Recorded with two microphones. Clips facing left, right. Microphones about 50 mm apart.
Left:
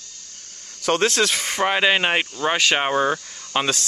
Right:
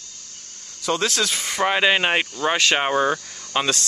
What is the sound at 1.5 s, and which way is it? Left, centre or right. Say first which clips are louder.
Speech: right 2 dB; centre.